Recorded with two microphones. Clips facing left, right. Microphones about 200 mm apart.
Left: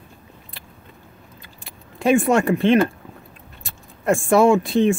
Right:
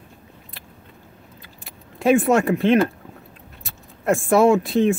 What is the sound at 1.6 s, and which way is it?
Speech, centre (ahead or behind).